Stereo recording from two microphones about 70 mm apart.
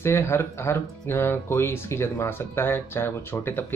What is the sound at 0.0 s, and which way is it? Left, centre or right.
Speech, left.